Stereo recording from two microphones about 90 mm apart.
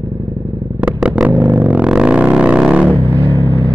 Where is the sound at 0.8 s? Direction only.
10° right (ahead or behind).